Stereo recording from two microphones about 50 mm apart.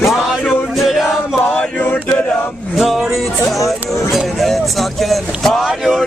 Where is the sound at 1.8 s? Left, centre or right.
Left.